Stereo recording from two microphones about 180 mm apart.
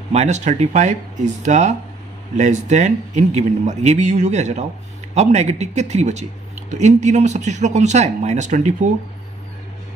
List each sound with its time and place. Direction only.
0.1 s speech: 40° right (ahead or behind)